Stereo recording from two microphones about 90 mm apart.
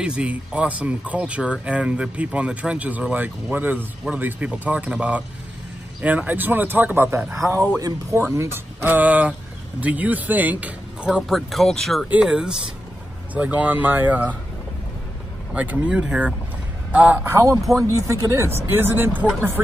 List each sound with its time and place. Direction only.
0.0 s speech: 10° right (ahead or behind)
7.3 s speech: 35° right (ahead or behind)
8.8 s speech: 20° right (ahead or behind)
11.1 s speech: 5° right (ahead or behind)
12.1 s speech: 10° right (ahead or behind)
15.5 s speech: 15° right (ahead or behind)
16.9 s speech: 15° right (ahead or behind)